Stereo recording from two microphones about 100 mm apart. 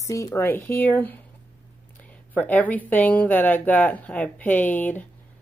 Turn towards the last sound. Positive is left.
turn(degrees=15)  # may be behind; listen again after turning